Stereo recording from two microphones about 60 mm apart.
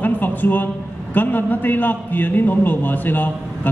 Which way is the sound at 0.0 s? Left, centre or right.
Left.